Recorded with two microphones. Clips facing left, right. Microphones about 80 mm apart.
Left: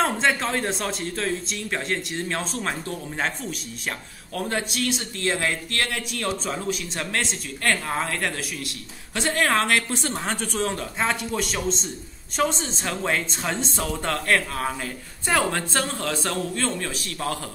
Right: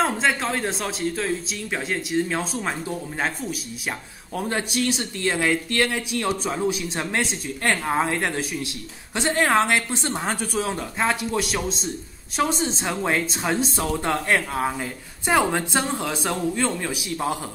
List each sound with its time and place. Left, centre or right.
0.0 s a man's voice: centre
7.0 s a man's voice: right